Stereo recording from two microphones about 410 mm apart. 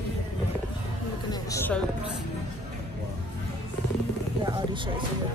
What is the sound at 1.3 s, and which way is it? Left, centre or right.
Speech, centre.